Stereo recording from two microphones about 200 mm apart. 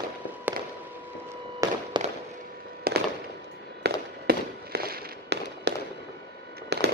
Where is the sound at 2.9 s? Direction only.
50° right (ahead or behind).